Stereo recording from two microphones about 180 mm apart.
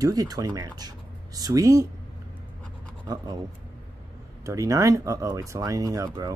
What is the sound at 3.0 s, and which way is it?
Speech, 20° right (ahead or behind).